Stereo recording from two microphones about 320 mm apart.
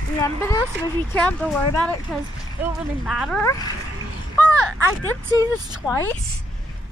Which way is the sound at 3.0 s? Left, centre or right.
Centre.